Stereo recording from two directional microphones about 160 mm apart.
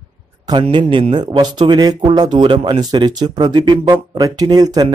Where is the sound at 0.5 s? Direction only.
30° right (ahead or behind).